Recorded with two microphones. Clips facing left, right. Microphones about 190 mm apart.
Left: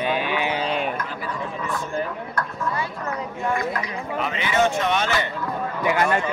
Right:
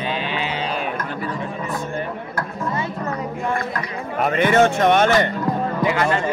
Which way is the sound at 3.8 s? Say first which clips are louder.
Right 3 dB; 50° right (ahead or behind).